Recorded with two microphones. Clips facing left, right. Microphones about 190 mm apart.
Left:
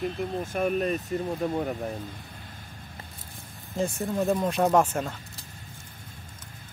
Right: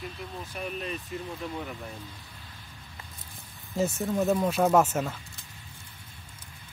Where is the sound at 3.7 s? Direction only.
Centre (ahead or behind).